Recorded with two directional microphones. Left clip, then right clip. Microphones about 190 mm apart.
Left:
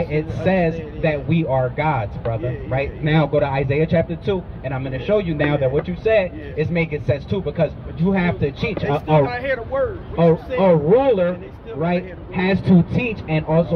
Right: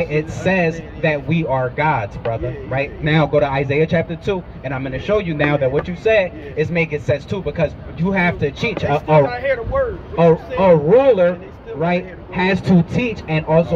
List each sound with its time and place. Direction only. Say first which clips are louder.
0.0 s speech: right 2 dB; 25° right (ahead or behind)
9.3 s speech: right 3 dB; 50° left (ahead or behind)
10.1 s speech: right 3 dB; 20° right (ahead or behind)